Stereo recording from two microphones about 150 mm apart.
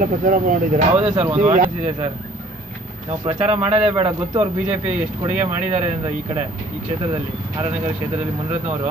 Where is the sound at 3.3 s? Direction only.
45° right (ahead or behind).